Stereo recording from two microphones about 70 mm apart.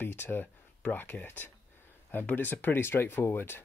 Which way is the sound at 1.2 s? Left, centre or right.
Left.